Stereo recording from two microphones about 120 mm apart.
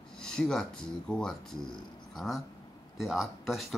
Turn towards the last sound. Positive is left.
turn(degrees=0)  # may be behind; listen again after turning